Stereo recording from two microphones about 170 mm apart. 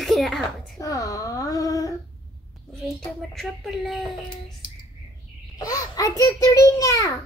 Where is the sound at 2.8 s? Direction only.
Centre (ahead or behind).